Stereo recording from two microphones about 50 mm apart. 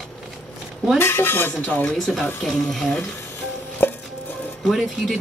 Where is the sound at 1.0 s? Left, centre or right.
Left.